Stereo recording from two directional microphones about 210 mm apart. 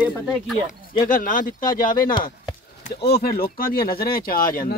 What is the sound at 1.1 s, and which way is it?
A man's voice, 40° left (ahead or behind).